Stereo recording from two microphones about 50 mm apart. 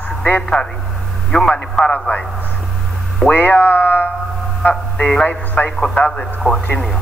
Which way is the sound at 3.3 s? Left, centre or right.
Left.